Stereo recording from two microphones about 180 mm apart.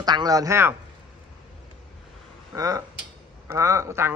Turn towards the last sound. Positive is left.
turn(degrees=-15)  # may be behind; listen again after turning